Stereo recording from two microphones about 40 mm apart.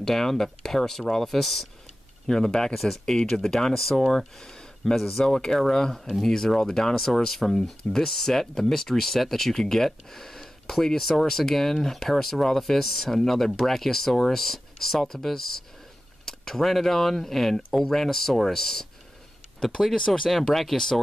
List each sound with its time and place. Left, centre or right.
0.0 s speech: centre
2.2 s speech: centre
19.8 s speech: centre
20.4 s speech: centre